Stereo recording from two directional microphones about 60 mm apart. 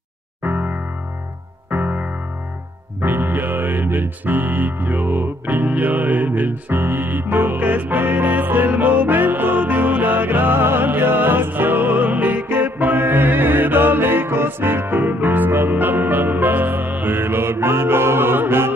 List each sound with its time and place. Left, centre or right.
0.4 s music: right